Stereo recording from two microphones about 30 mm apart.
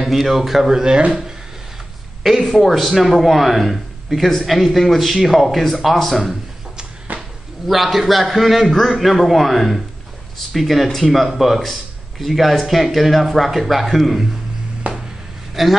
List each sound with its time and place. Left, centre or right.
0.0 s speech: centre; by 1.0 s right
2.2 s speech: centre
2.6 s a man's voice: centre
7.1 s a sound: right
7.6 s a man's voice: centre
14.8 s a sound: right
15.6 s a man's voice: centre